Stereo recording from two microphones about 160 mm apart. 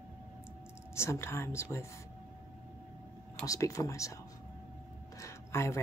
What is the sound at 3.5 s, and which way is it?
Speech, 20° left (ahead or behind).